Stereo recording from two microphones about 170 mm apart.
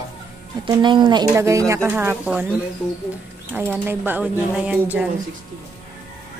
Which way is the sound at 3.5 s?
15° right (ahead or behind).